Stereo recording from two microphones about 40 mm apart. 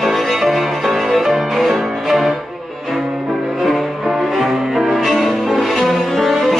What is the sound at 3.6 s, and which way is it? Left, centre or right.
Cello, centre.